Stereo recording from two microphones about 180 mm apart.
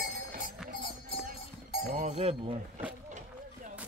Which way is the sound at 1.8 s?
45° right (ahead or behind).